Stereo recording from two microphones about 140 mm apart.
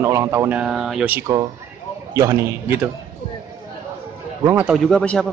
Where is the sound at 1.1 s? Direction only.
20° right (ahead or behind).